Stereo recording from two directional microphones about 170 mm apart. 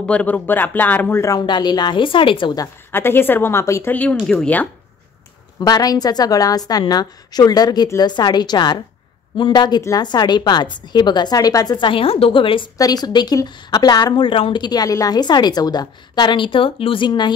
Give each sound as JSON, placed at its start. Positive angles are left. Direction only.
{"t": 0.0, "sound": "speech", "side_deg": 10}
{"t": 5.6, "sound": "a woman's voice", "side_deg": 20}